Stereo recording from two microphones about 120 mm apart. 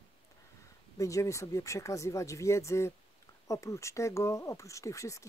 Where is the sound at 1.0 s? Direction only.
25° left (ahead or behind).